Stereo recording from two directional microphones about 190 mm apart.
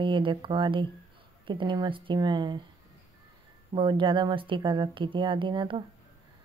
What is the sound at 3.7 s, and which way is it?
A woman's voice, 25° right (ahead or behind).